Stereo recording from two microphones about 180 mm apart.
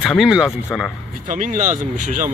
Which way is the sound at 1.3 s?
45° right (ahead or behind).